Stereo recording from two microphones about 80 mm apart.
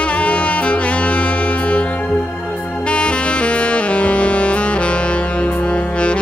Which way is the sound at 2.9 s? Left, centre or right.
Centre.